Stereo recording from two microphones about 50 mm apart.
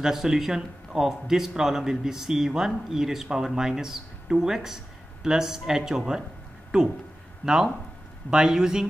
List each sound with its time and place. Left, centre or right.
0.0 s speech: centre